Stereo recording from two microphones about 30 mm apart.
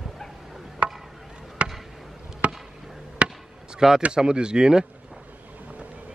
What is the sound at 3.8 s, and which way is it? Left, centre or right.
Speech, centre.